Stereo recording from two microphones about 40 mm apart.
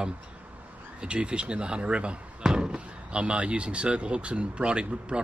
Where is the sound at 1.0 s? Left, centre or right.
Right.